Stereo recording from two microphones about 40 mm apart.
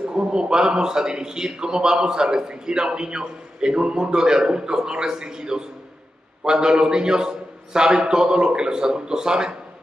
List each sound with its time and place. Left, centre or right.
0.1 s a man's voice: right